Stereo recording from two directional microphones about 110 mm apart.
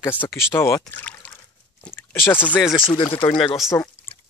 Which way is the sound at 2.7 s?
50° left (ahead or behind).